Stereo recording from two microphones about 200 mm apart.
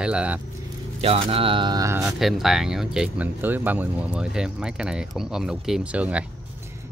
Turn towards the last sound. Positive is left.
turn(degrees=-5)  # may be behind; listen again after turning